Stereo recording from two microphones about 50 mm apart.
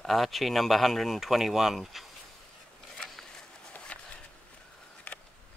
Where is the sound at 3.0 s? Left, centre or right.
Centre.